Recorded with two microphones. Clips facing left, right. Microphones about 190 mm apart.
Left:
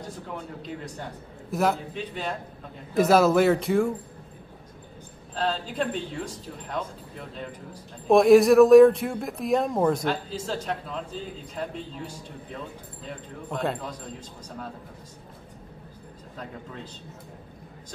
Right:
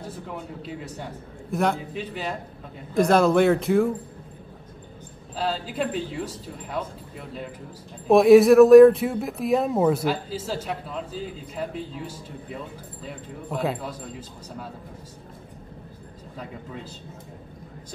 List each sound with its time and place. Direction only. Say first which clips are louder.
0.3 s speech: even; 5° right (ahead or behind)
5.3 s speech: even; 5° right (ahead or behind)
13.0 s speech: right 1 dB; 5° right (ahead or behind)